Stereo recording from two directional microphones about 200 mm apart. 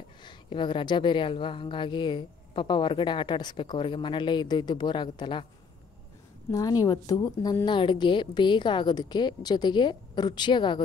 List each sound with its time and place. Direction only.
0.2 s speech: 25° left (ahead or behind)
6.5 s speech: 15° left (ahead or behind)